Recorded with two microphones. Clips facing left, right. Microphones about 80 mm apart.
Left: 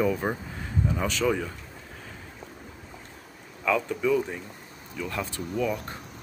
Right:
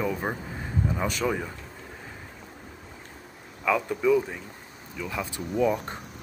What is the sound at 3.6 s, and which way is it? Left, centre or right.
Speech, centre.